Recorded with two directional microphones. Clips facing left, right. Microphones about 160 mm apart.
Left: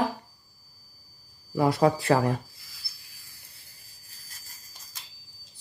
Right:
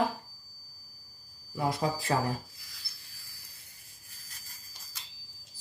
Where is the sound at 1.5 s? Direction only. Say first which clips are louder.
Left 8 dB; 70° left (ahead or behind).